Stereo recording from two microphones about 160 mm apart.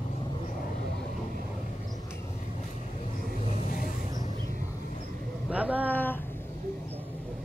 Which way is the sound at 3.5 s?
60° left (ahead or behind).